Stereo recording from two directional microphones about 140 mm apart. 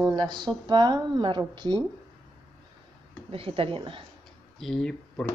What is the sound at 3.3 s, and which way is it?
Speech, 40° right (ahead or behind).